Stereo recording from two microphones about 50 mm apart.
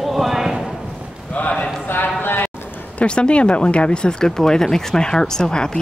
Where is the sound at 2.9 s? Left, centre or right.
Centre.